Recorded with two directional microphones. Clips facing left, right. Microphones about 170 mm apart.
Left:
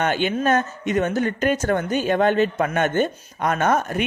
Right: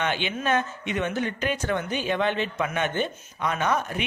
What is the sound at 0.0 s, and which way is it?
Speech, 45° left (ahead or behind).